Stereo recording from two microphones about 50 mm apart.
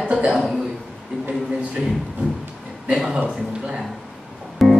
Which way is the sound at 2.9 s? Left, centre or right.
Centre.